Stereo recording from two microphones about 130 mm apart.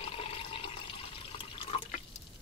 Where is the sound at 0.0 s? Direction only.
45° left (ahead or behind).